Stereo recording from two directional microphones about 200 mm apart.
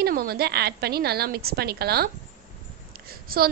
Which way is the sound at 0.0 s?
50° right (ahead or behind).